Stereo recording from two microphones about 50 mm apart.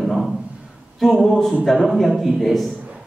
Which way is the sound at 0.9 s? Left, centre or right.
Centre.